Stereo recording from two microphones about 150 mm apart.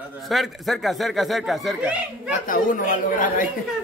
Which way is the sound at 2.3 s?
65° left (ahead or behind).